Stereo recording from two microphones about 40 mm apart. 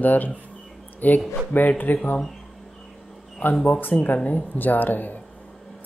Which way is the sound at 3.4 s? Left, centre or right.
Left.